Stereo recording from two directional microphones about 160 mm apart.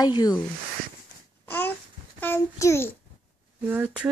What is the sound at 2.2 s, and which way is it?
Speech, 15° left (ahead or behind).